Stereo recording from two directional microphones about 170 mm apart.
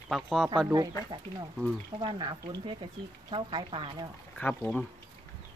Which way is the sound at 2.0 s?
25° right (ahead or behind).